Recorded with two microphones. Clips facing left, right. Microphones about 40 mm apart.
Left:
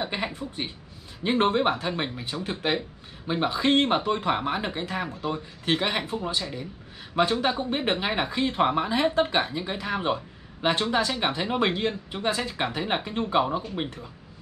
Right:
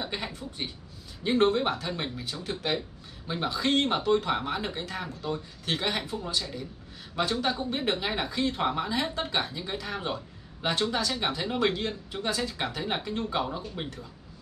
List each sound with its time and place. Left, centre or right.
0.0 s speech: left